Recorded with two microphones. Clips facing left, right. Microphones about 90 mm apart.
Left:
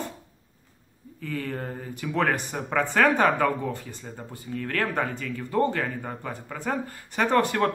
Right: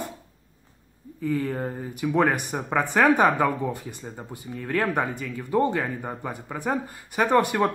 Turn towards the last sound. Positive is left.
turn(degrees=-15)  # may be behind; listen again after turning